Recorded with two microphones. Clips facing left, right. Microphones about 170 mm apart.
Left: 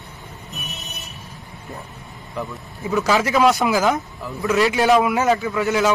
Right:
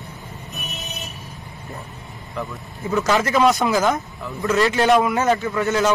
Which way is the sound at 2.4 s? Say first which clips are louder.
Even; centre (ahead or behind).